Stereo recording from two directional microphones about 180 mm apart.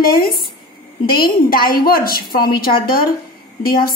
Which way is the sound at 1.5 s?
55° left (ahead or behind).